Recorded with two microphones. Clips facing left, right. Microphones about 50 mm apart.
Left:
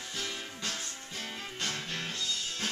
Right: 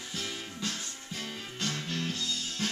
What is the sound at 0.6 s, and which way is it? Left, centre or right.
Music, centre.